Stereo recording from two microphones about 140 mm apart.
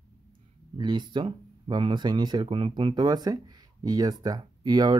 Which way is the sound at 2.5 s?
45° right (ahead or behind).